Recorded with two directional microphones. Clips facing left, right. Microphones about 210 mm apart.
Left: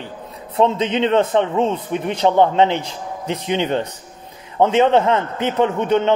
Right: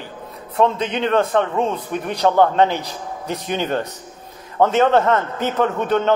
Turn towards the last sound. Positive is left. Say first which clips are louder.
# left 2 dB
turn(degrees=20)  # may be behind; listen again after turning